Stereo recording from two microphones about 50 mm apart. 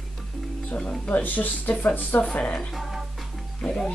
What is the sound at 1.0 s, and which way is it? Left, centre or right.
Speech, left.